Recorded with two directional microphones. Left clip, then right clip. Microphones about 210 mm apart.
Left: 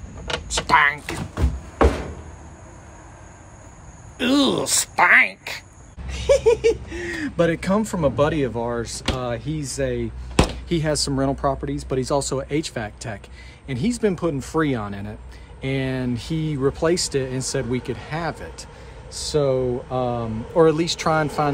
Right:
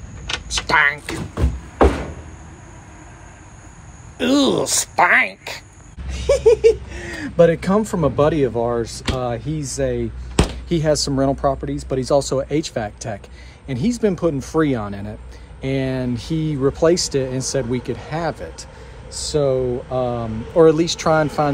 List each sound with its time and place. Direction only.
0.5 s speech: 10° left (ahead or behind)
4.2 s speech: 10° left (ahead or behind)
10.4 s a sound: 30° left (ahead or behind)
10.7 s speech: 10° left (ahead or behind)